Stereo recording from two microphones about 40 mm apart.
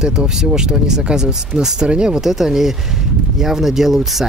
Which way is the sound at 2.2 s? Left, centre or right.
Centre.